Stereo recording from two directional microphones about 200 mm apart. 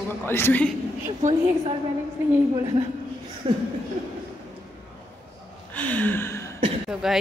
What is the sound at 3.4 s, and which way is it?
Speech, 25° right (ahead or behind).